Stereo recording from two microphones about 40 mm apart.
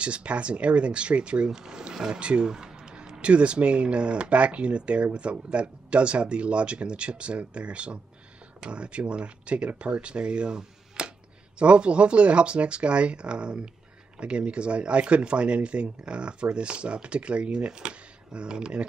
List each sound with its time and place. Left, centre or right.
0.0 s speech: right
1.5 s speech: centre